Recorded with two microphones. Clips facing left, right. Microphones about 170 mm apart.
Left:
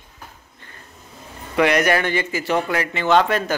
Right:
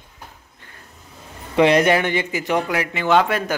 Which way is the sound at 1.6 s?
25° right (ahead or behind).